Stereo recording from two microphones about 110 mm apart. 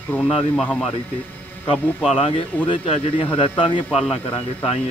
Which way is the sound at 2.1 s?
60° left (ahead or behind).